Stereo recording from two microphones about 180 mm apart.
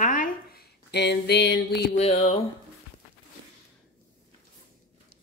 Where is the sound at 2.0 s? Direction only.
35° left (ahead or behind).